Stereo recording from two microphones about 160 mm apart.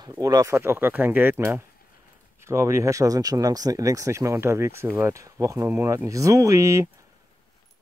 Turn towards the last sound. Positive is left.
turn(degrees=-20)  # may be behind; listen again after turning